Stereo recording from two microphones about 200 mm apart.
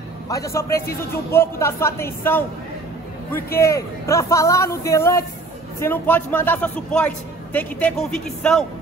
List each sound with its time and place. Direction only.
0.3 s a man's voice: 15° left (ahead or behind)
3.5 s a man's voice: 15° left (ahead or behind)